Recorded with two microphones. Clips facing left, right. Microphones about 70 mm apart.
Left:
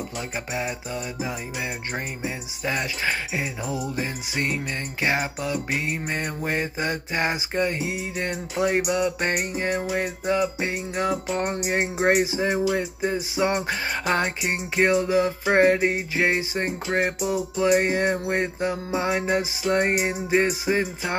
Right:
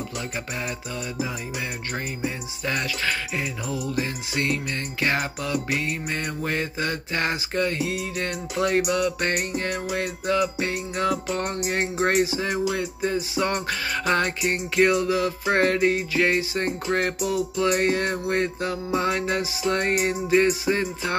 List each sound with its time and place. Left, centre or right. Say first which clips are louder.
2.2 s mantra: right 1 dB; centre